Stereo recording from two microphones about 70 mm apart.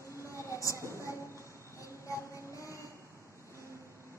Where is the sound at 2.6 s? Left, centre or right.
Left.